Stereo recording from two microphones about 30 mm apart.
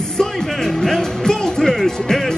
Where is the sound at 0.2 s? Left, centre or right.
Centre.